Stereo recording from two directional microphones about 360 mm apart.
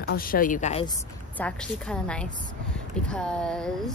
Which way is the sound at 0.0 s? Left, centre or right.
Left.